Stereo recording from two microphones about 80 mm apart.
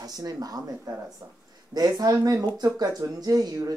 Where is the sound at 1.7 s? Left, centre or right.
Right.